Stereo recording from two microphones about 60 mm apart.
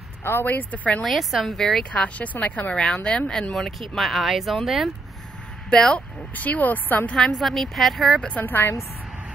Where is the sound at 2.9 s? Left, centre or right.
Centre.